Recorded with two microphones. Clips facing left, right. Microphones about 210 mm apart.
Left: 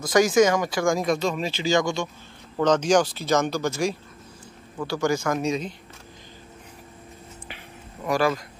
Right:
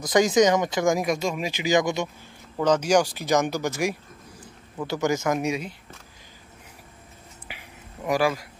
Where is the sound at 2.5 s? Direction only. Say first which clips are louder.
Left 1 dB; 10° right (ahead or behind).